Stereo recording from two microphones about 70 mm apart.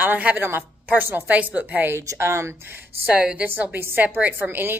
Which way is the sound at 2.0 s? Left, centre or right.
Right.